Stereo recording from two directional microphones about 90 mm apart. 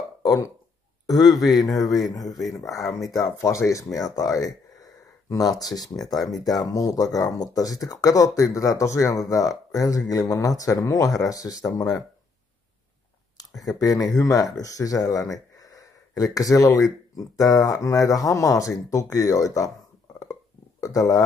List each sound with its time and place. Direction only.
0.2 s a sound: 40° left (ahead or behind)
1.1 s speech: 45° left (ahead or behind)
2.2 s speech: centre (ahead or behind)
2.7 s speech: 40° left (ahead or behind)
13.7 s speech: 40° left (ahead or behind)
20.8 s speech: 40° left (ahead or behind)